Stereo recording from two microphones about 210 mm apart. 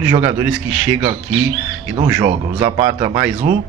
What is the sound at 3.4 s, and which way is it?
Speech, 40° right (ahead or behind).